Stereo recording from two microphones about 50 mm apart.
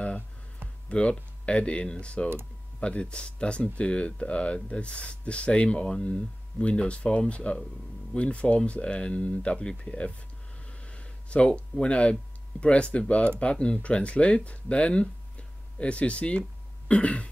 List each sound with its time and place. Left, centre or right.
0.8 s speech: left
10.9 s a sound: left
11.8 s speech: left